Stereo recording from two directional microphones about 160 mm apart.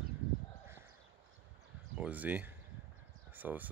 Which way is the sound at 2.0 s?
10° right (ahead or behind).